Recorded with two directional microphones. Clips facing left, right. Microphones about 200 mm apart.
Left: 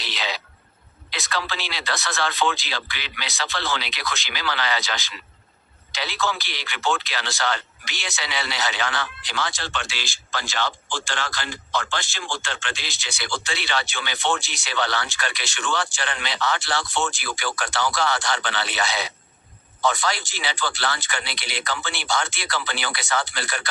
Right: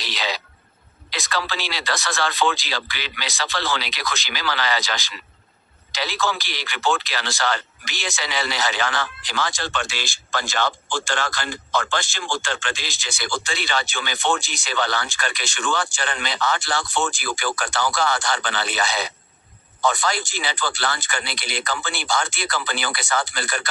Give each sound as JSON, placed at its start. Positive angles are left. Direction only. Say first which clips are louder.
{"t": 0.0, "sound": "a sound", "louder": "right 2 dB", "side_deg": -40}
{"t": 1.1, "sound": "speech", "louder": "right 2 dB", "side_deg": -40}
{"t": 5.9, "sound": "speech", "louder": "right 2 dB", "side_deg": -45}